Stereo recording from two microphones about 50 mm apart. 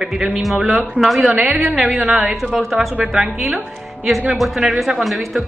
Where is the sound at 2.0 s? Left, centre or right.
Centre.